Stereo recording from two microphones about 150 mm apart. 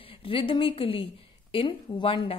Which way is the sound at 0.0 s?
35° left (ahead or behind).